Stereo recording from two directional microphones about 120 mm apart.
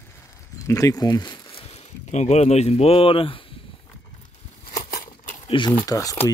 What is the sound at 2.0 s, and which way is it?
Speech, 70° left (ahead or behind).